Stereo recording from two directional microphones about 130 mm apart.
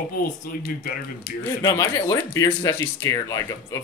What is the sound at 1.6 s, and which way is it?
Speech, 25° left (ahead or behind).